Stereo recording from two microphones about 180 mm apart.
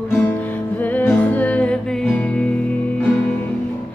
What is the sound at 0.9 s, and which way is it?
Music, 10° left (ahead or behind).